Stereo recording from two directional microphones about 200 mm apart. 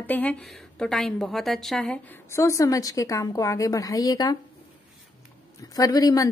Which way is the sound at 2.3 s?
15° left (ahead or behind).